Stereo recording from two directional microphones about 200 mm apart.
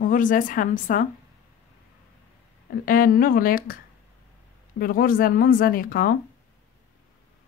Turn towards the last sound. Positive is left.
turn(degrees=45)  # may be behind; listen again after turning